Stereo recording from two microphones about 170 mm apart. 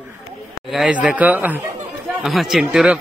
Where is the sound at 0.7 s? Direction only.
5° right (ahead or behind).